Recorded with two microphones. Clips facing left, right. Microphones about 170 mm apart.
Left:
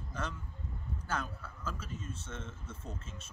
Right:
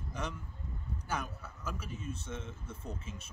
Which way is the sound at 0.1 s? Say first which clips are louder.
Even; 15° right (ahead or behind).